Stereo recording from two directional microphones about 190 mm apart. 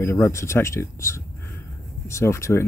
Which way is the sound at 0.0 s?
15° left (ahead or behind).